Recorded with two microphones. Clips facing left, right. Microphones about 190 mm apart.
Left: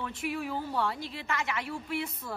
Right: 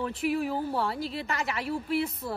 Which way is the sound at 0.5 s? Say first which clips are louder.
Right 3 dB; 30° right (ahead or behind).